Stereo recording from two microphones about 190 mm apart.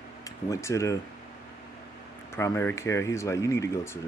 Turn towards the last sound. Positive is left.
turn(degrees=15)  # may be behind; listen again after turning